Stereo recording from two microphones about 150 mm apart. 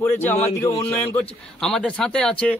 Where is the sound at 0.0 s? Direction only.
15° left (ahead or behind).